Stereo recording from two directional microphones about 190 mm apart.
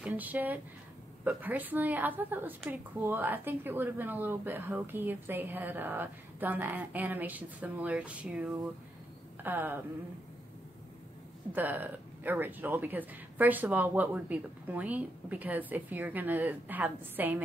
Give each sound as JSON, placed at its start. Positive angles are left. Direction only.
{"t": 0.0, "sound": "a woman's voice", "side_deg": -10}
{"t": 11.5, "sound": "a woman's voice", "side_deg": -10}